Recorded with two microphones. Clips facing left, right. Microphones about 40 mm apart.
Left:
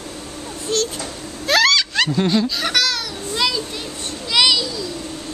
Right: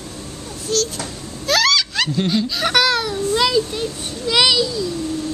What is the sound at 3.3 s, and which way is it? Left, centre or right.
Children playing, centre.